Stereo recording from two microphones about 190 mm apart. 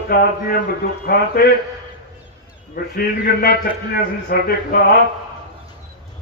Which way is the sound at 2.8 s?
50° left (ahead or behind).